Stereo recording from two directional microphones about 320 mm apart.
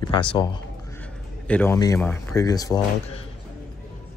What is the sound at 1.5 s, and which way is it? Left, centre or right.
Speech, centre.